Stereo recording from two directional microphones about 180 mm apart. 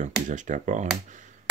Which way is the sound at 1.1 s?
45° right (ahead or behind).